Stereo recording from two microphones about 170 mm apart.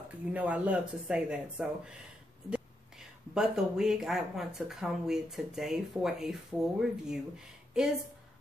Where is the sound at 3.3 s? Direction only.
5° right (ahead or behind).